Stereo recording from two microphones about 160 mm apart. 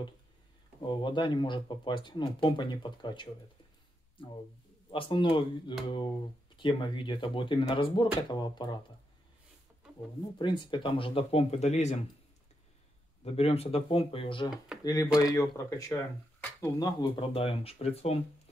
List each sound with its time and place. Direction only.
0.8 s speech: 30° left (ahead or behind)
4.9 s speech: 35° left (ahead or behind)
10.4 s speech: 30° left (ahead or behind)
13.2 s speech: 40° left (ahead or behind)